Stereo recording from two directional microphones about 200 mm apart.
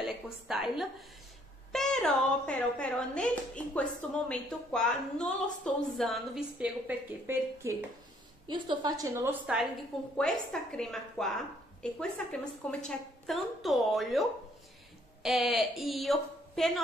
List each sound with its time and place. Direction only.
0.0 s a woman's voice: centre (ahead or behind)
8.5 s a woman's voice: 25° right (ahead or behind); by 9.7 s 5° right (ahead or behind)
10.1 s a woman's voice: 5° left (ahead or behind)
15.2 s a woman's voice: centre (ahead or behind)